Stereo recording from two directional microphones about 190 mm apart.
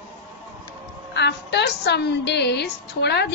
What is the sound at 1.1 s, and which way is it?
A woman's voice, 65° left (ahead or behind).